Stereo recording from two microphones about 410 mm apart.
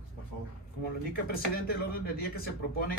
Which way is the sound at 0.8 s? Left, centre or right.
Left.